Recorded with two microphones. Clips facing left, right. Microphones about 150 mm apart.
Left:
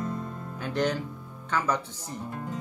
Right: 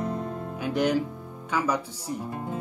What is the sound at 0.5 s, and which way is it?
Speech, 10° right (ahead or behind).